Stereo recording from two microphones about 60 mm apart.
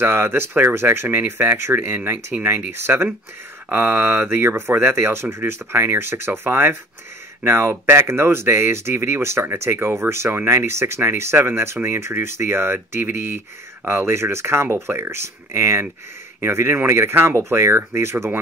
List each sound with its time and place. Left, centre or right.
0.0 s speech: right